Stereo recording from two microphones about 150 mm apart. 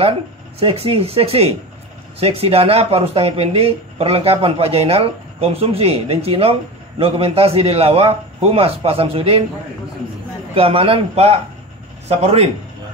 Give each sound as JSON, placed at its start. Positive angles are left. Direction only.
{"t": 0.6, "sound": "speech", "side_deg": -40}
{"t": 10.5, "sound": "speech", "side_deg": -40}